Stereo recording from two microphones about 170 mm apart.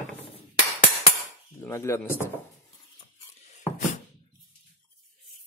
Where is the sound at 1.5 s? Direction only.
15° left (ahead or behind).